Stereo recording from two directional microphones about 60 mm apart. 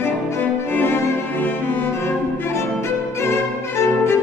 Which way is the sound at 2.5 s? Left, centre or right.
Left.